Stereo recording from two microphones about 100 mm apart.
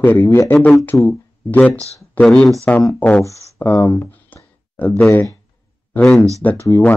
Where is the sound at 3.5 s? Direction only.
25° left (ahead or behind).